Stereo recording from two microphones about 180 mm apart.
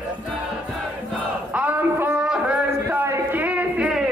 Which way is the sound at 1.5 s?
10° right (ahead or behind).